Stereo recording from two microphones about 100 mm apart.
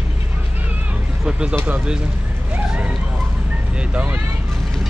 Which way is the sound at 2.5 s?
15° right (ahead or behind).